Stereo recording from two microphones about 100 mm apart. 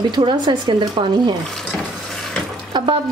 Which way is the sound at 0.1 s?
50° right (ahead or behind).